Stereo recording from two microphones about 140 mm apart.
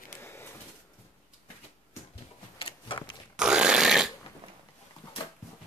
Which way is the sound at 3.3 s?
5° right (ahead or behind).